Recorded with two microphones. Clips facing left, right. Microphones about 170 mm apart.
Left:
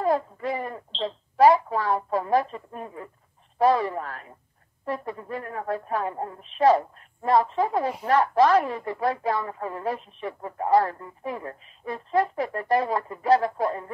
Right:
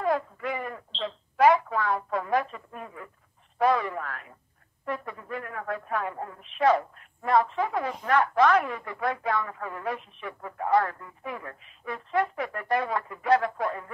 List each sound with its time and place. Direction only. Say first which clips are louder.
0.0 s speech: left 3 dB; 35° left (ahead or behind)